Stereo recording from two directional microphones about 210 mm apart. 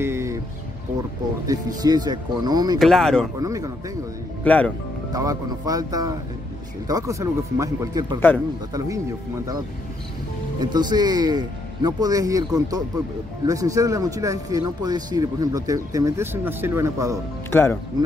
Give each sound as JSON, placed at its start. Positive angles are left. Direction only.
{"t": 0.0, "sound": "music", "side_deg": -15}
{"t": 1.5, "sound": "a man's voice", "side_deg": -20}
{"t": 2.8, "sound": "speech", "side_deg": 0}
{"t": 3.3, "sound": "speech", "side_deg": -15}
{"t": 4.5, "sound": "speech", "side_deg": 5}
{"t": 5.1, "sound": "speech", "side_deg": -15}
{"t": 10.6, "sound": "a man's voice", "side_deg": -20}
{"t": 17.5, "sound": "speech", "side_deg": 10}